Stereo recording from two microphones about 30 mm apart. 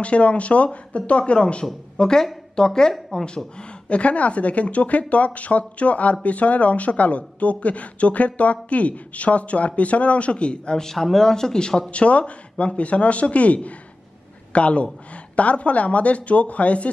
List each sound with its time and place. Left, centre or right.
0.0 s a woman's voice: left
3.5 s a woman's voice: left
10.8 s speech: centre
11.9 s a woman's voice: left